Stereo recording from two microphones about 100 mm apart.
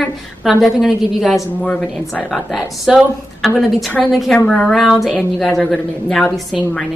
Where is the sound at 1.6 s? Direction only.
15° left (ahead or behind).